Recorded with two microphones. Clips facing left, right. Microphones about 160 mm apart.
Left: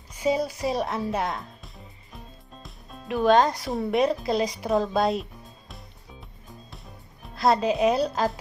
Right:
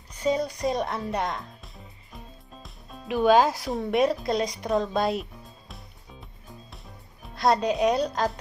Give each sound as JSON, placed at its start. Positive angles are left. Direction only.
{"t": 0.1, "sound": "speech", "side_deg": 10}
{"t": 7.2, "sound": "speech", "side_deg": 0}